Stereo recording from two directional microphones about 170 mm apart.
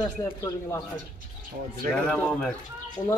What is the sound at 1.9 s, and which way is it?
Speech, 5° left (ahead or behind).